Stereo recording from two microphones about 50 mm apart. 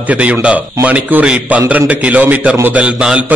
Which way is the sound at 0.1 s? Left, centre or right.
Right.